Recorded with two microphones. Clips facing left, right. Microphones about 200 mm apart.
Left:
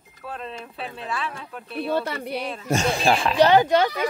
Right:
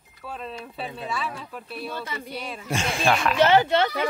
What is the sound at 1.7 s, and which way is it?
Speech, 65° left (ahead or behind).